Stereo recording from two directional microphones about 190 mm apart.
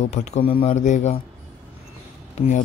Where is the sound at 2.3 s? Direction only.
40° left (ahead or behind).